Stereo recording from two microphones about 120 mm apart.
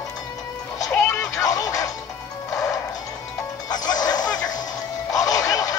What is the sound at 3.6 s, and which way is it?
Music, 35° left (ahead or behind).